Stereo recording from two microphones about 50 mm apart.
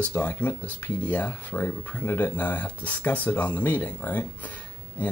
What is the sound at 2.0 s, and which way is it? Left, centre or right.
Speech, left.